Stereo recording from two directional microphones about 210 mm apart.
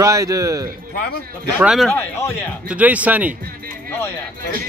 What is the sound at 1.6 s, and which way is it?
Speech, centre (ahead or behind).